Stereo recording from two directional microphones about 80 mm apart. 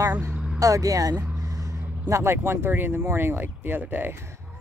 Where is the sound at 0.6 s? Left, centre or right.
Right.